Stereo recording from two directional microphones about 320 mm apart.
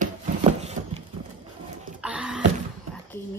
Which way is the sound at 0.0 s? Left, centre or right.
Centre.